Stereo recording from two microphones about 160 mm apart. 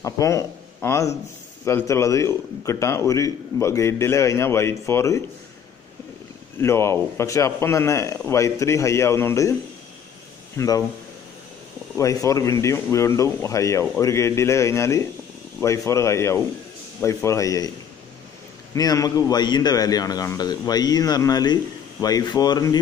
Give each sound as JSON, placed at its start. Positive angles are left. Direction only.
{"t": 0.0, "sound": "a man's voice", "side_deg": 20}
{"t": 6.6, "sound": "a man's voice", "side_deg": 15}
{"t": 12.0, "sound": "a man's voice", "side_deg": 20}
{"t": 18.8, "sound": "a man's voice", "side_deg": 25}